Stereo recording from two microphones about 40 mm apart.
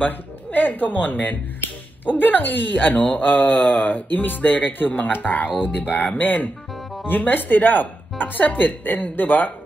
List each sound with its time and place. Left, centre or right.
0.0 s speech: left